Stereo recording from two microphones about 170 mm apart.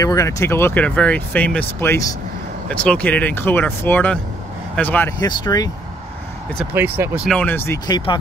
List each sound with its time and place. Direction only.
0.0 s speech: 20° left (ahead or behind)
5.2 s speech: 20° left (ahead or behind)
6.6 s speech: 5° right (ahead or behind)
7.2 s speech: 10° left (ahead or behind)
7.8 s speech: 25° left (ahead or behind)